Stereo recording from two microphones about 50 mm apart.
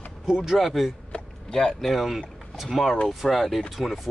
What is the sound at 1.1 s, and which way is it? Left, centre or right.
Vehicle, centre.